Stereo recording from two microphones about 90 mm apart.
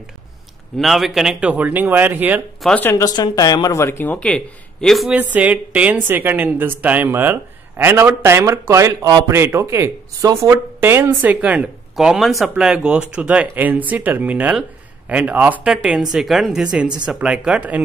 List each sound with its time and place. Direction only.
0.7 s speech: centre (ahead or behind); by 2.4 s 20° right (ahead or behind)
2.7 s speech: 25° left (ahead or behind)
3.0 s speech: 45° left (ahead or behind)
4.0 s speech: 15° left (ahead or behind)
5.1 s a woman's voice: 15° right (ahead or behind); by 10.5 s 35° right (ahead or behind)
10.5 s speech: 25° right (ahead or behind)